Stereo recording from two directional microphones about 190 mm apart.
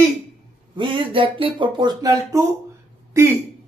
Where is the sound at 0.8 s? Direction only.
25° right (ahead or behind).